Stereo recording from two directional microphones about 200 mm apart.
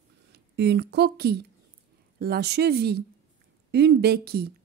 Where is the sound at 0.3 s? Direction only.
55° right (ahead or behind).